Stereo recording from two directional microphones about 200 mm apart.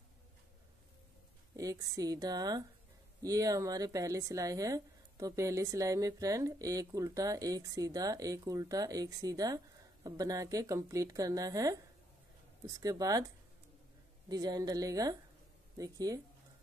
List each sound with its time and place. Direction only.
1.6 s a woman's voice: 15° right (ahead or behind)
14.3 s a woman's voice: 20° right (ahead or behind)